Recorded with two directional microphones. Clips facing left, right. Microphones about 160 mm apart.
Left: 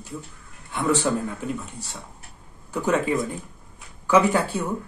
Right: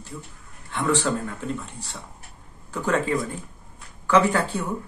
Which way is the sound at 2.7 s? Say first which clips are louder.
Left 1 dB; 15° left (ahead or behind).